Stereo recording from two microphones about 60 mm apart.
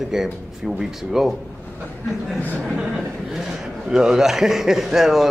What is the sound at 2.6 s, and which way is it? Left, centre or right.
A man's voice, centre.